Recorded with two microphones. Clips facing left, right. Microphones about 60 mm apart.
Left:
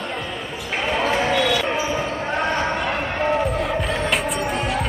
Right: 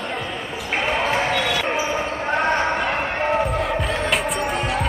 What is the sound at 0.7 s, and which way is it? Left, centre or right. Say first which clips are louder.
Basketball bounce: even; centre.